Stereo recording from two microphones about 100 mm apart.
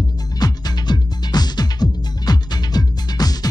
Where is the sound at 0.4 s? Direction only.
45° left (ahead or behind).